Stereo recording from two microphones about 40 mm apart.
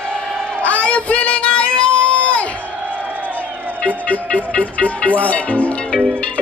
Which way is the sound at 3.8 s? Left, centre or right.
Left.